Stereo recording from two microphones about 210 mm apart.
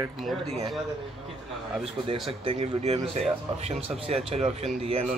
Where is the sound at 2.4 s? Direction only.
30° right (ahead or behind).